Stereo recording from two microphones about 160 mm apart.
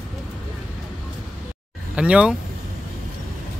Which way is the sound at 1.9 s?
5° right (ahead or behind).